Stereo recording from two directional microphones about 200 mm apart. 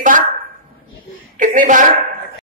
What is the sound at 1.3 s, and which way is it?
Speech, 40° right (ahead or behind).